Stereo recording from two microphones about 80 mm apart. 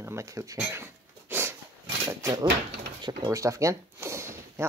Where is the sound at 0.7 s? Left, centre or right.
Right.